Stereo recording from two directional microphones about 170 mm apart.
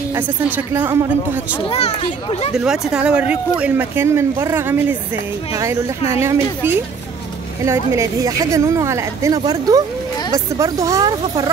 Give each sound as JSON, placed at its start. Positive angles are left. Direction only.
{"t": 0.1, "sound": "speech", "side_deg": -10}
{"t": 1.6, "sound": "a child's voice", "side_deg": 35}
{"t": 2.5, "sound": "speech", "side_deg": -5}